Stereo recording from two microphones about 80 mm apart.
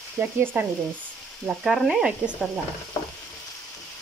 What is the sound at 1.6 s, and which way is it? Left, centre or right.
Speech, centre.